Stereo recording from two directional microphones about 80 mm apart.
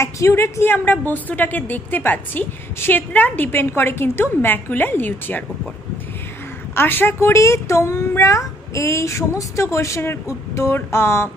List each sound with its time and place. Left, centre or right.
0.0 s a woman's voice: left
6.7 s a woman's voice: left